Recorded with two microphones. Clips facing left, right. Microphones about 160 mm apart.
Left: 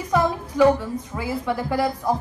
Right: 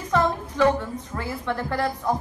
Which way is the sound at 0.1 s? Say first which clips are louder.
Left 1 dB; 10° left (ahead or behind).